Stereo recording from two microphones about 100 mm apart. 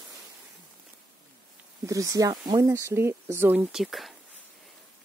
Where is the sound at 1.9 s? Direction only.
35° right (ahead or behind).